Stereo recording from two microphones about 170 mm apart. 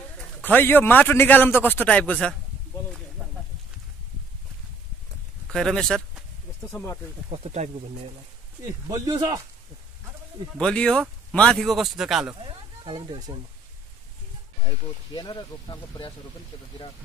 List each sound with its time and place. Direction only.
0.4 s a man's voice: 10° left (ahead or behind)
5.5 s a sound: 5° left (ahead or behind)
7.2 s speech: 40° right (ahead or behind)
8.6 s a man's voice: 20° right (ahead or behind)
10.6 s a man's voice: 5° left (ahead or behind)
12.4 s speech: 30° right (ahead or behind)
15.1 s speech: 25° left (ahead or behind)